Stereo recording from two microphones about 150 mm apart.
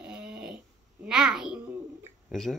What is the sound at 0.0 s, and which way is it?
Dog, 5° right (ahead or behind).